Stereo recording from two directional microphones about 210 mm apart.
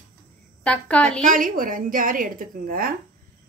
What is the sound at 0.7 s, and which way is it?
Speech, 5° left (ahead or behind).